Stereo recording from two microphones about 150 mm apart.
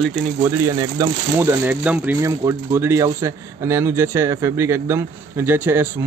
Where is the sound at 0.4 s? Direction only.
20° right (ahead or behind).